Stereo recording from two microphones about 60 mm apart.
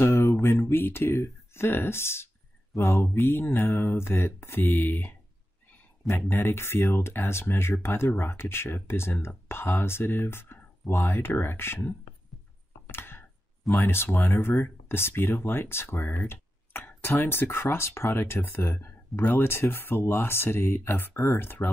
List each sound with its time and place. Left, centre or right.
0.0 s speech: left
12.8 s chopping: left
13.7 s speech: left